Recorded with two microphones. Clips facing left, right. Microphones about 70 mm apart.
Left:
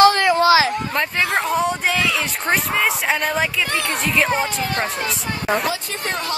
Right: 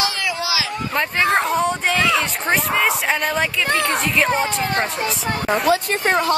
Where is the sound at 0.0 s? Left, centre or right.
Left.